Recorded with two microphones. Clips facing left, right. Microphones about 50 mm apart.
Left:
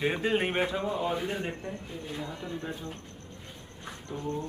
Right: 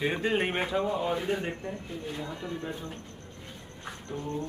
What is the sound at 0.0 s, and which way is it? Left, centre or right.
Speech, centre.